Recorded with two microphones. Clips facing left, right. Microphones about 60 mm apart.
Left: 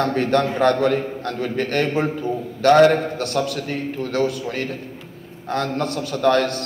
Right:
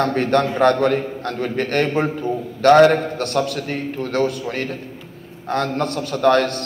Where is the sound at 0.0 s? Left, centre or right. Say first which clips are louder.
Right 1 dB; right.